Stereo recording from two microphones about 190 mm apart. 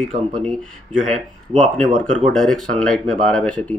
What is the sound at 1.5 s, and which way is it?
Speech, 35° right (ahead or behind).